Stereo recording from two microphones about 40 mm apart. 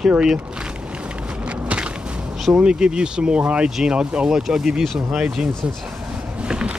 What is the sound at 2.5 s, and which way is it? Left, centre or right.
Speech, right.